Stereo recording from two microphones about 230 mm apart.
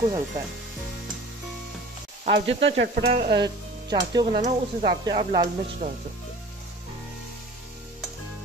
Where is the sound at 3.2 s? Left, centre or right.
Centre.